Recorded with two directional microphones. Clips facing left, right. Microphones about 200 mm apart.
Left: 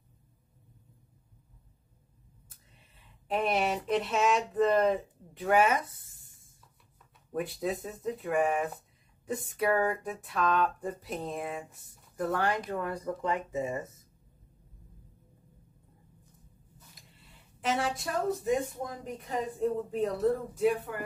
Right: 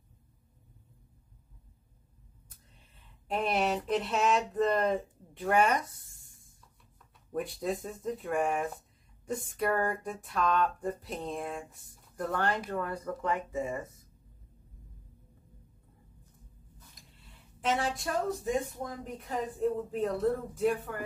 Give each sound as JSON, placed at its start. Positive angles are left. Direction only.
{"t": 3.3, "sound": "speech", "side_deg": 0}
{"t": 16.9, "sound": "speech", "side_deg": 0}